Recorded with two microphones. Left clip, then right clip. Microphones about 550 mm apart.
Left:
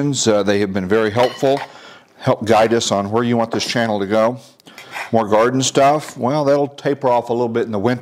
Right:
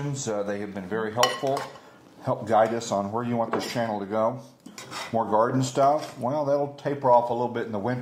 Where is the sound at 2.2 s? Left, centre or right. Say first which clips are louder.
Left 8 dB; left.